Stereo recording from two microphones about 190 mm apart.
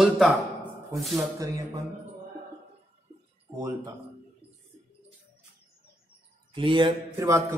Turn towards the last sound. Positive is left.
turn(degrees=-15)  # may be behind; listen again after turning